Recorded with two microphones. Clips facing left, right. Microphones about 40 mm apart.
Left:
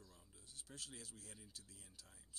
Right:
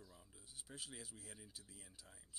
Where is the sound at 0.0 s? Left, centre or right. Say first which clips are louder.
Right 2 dB; centre.